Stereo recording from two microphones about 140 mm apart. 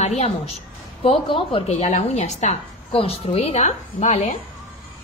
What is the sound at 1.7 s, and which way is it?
A woman's voice, 55° left (ahead or behind).